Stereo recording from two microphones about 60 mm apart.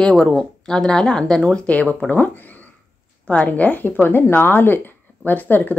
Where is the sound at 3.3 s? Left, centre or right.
Left.